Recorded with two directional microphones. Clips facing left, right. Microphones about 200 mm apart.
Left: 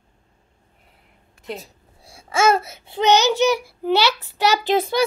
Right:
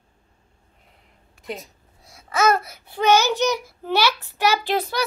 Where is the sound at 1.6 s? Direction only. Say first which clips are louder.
Left 1 dB; 30° left (ahead or behind).